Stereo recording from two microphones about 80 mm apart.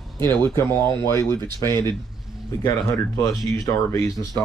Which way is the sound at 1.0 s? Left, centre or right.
Left.